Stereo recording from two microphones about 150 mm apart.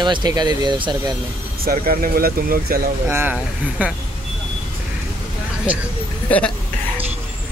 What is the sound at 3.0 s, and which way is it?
Speech, 15° right (ahead or behind).